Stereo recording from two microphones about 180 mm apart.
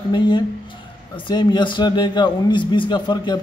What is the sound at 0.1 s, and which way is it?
A man's voice, 25° left (ahead or behind).